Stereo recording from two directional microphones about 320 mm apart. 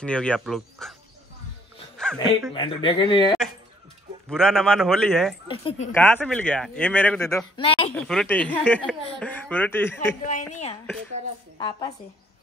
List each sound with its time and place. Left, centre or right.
0.0 s speech: centre
2.0 s speech: centre
2.5 s speech: centre
4.3 s speech: centre
5.5 s speech: centre
5.9 s speech: centre
7.9 s speech: centre
10.2 s a woman's voice: left